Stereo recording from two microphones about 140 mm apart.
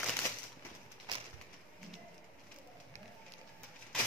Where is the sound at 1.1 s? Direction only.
35° right (ahead or behind).